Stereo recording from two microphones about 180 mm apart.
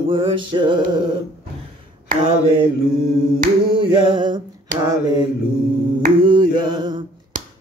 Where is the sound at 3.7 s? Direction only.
25° right (ahead or behind).